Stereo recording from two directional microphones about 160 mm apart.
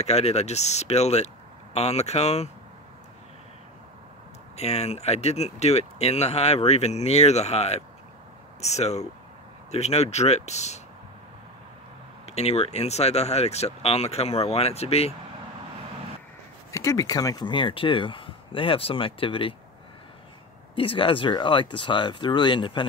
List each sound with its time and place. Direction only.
0.0 s speech: 40° left (ahead or behind)
4.6 s speech: 40° left (ahead or behind)
12.3 s speech: 40° left (ahead or behind)
16.7 s speech: 20° left (ahead or behind)
20.7 s speech: 35° left (ahead or behind)